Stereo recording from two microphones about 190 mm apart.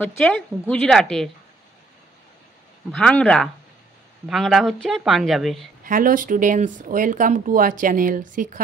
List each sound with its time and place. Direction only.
0.0 s a woman's voice: 5° left (ahead or behind)
2.9 s a woman's voice: 5° left (ahead or behind)
5.9 s speech: 45° right (ahead or behind)